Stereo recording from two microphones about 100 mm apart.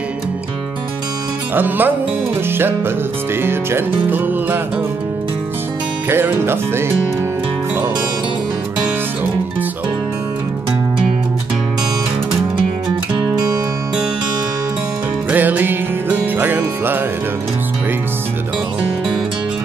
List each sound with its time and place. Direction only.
1.5 s music: 20° right (ahead or behind)
3.4 s music: 20° right (ahead or behind)
6.0 s music: 25° right (ahead or behind)
15.3 s music: 15° right (ahead or behind)